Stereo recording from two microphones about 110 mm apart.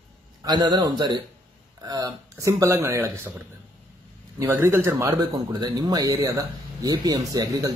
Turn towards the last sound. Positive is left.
turn(degrees=-35)  # may be behind; listen again after turning